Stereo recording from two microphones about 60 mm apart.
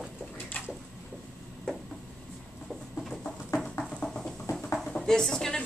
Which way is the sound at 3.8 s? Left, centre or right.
Centre.